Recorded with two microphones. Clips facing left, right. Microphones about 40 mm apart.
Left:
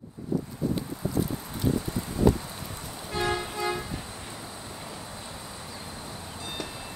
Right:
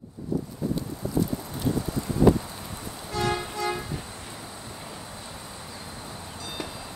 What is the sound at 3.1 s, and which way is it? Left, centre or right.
Music, left.